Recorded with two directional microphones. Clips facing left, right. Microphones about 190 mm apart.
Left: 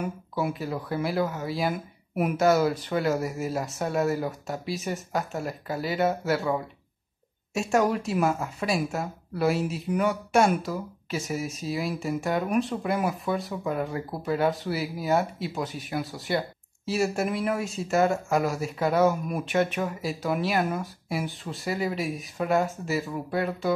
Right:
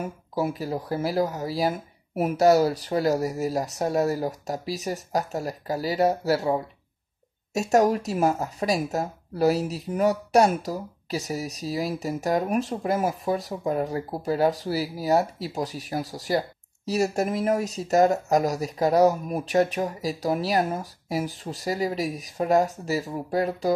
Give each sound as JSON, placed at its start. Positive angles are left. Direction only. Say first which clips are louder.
{"t": 0.0, "sound": "speech", "louder": "right 2 dB", "side_deg": -40}